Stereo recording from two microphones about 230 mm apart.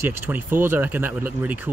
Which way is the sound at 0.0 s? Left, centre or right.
Centre.